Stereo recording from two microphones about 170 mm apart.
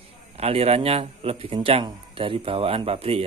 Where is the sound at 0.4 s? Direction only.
35° right (ahead or behind).